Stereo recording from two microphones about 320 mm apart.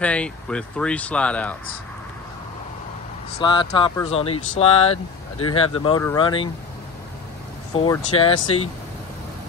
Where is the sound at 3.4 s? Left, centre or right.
Centre.